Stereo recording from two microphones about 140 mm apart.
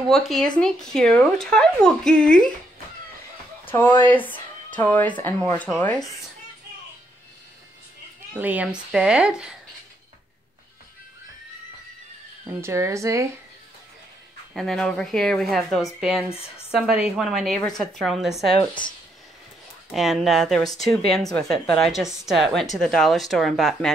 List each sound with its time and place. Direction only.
0.1 s speech: centre (ahead or behind)
3.6 s speech: 15° left (ahead or behind)
8.4 s speech: 10° right (ahead or behind)
12.4 s a woman's voice: 20° right (ahead or behind)
14.5 s speech: 5° left (ahead or behind)
18.6 s speech: 35° left (ahead or behind)
19.9 s speech: centre (ahead or behind)